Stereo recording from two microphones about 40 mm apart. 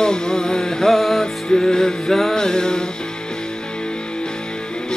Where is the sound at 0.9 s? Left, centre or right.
Centre.